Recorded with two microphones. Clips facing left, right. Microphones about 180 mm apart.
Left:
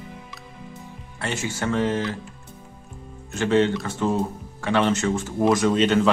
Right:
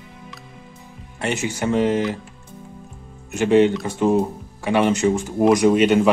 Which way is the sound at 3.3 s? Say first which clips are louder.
Right 5 dB; 15° right (ahead or behind).